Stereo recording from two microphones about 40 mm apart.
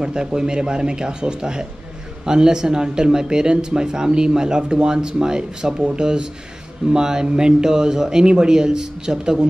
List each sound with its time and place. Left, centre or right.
0.0 s speech: centre